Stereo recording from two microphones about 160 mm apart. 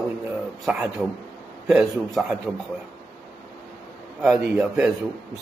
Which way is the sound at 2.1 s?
5° right (ahead or behind).